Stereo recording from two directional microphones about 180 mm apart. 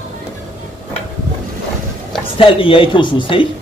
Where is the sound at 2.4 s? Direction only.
30° left (ahead or behind).